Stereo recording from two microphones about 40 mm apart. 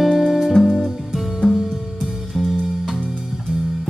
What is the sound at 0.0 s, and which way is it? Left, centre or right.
Music, centre.